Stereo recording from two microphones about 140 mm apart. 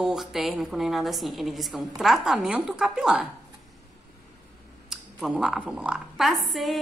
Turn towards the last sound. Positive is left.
turn(degrees=0)  # may be behind; listen again after turning